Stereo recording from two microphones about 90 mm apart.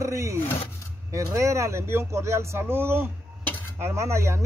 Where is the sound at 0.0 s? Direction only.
35° right (ahead or behind).